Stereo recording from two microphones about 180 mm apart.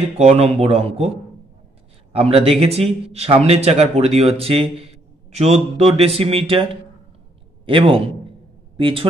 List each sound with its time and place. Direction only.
0.0 s a man's voice: 35° right (ahead or behind)
2.1 s a man's voice: 35° right (ahead or behind)